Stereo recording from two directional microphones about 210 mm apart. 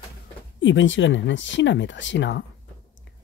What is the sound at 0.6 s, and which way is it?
Speech, 60° left (ahead or behind).